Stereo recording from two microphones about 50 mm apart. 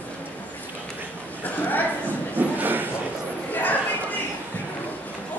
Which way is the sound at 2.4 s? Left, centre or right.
Right.